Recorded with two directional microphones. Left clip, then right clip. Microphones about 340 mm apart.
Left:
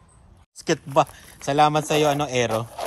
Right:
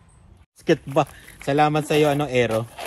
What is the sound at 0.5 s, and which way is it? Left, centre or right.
Speech, centre.